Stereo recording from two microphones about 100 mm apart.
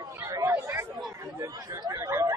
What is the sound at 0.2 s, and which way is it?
Chatter, 30° right (ahead or behind).